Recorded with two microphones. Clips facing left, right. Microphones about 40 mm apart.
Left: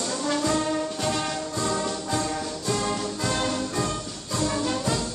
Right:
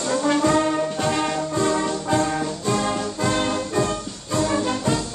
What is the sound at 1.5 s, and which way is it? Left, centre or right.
Music, right.